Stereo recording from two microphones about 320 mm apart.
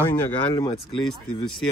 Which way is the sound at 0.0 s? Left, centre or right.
Centre.